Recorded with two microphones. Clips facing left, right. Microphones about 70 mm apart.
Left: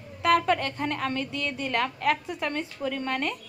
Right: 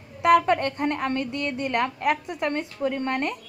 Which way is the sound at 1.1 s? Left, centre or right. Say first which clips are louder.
Right 3 dB; right.